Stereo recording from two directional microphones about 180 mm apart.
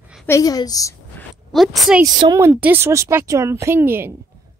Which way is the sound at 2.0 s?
20° right (ahead or behind).